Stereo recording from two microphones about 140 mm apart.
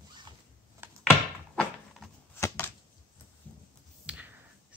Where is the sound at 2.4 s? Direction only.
20° left (ahead or behind).